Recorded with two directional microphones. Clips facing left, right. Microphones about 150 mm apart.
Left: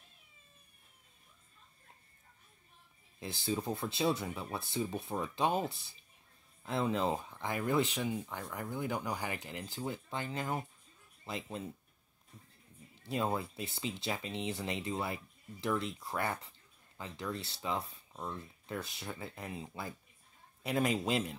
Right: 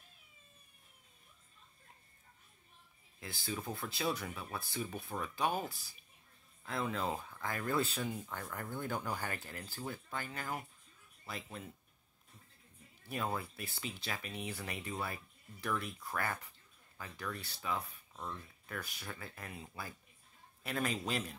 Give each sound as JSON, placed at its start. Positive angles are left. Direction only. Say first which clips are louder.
{"t": 3.2, "sound": "speech", "louder": "left 6 dB", "side_deg": 25}
{"t": 12.9, "sound": "speech", "louder": "left 4 dB", "side_deg": 25}